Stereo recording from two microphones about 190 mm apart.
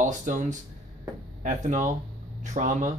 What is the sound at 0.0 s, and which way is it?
Speech, 40° right (ahead or behind).